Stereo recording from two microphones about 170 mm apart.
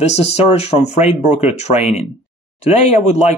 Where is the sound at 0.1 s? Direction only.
40° left (ahead or behind).